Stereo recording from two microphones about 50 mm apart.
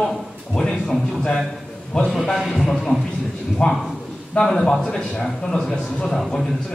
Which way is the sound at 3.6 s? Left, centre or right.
Centre.